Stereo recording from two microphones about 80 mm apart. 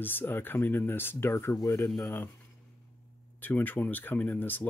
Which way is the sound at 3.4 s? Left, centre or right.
Left.